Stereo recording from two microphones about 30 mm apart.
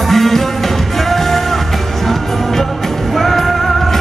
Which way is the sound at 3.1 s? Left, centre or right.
Centre.